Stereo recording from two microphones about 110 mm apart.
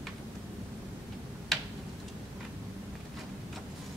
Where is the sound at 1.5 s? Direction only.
Centre (ahead or behind).